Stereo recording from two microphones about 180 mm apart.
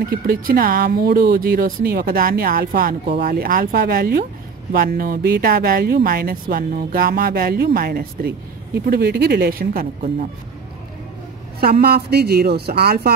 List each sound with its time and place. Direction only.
0.3 s speech: 55° right (ahead or behind)
11.8 s speech: 60° right (ahead or behind)